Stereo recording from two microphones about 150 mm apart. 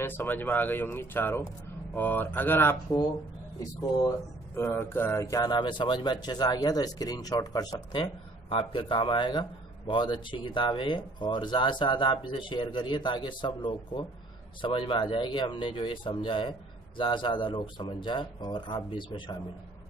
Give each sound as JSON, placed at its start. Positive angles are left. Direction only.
{"t": 0.0, "sound": "speech", "side_deg": 15}
{"t": 4.6, "sound": "speech", "side_deg": 15}